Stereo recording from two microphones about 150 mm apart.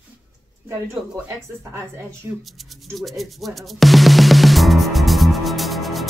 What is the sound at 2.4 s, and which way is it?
Music, centre (ahead or behind).